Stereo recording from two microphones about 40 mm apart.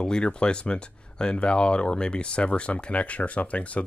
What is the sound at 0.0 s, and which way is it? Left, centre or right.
Speech, left.